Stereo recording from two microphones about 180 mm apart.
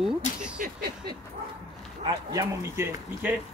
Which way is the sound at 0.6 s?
50° right (ahead or behind).